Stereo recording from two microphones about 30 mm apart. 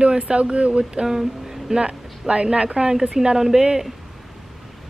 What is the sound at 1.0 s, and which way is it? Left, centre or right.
Speech, centre.